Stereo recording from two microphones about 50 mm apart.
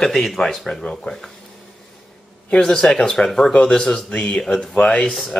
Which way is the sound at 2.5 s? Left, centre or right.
Centre.